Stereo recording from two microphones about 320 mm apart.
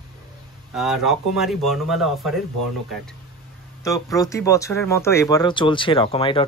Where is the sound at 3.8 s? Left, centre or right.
Centre.